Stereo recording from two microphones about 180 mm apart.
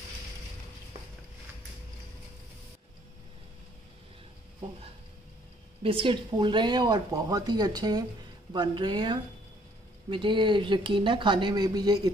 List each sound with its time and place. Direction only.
5.8 s speech: 30° right (ahead or behind)